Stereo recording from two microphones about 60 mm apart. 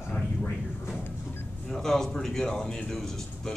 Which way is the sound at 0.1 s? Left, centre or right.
Centre.